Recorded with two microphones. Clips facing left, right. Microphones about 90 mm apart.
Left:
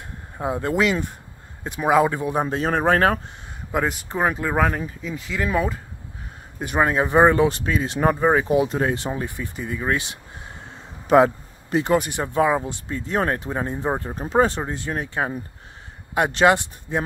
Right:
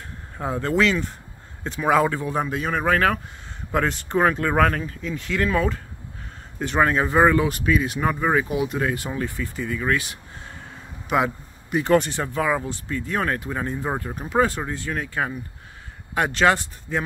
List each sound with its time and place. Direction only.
0.4 s speech: 15° left (ahead or behind)
2.4 s a man's voice: 35° left (ahead or behind)
3.7 s speech: 10° left (ahead or behind)
11.1 s a sound: 35° left (ahead or behind)
11.8 s speech: 15° left (ahead or behind)